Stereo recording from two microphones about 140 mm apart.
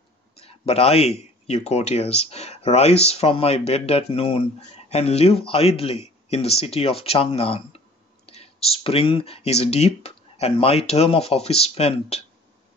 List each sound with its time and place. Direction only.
0.4 s speech: 45° left (ahead or behind)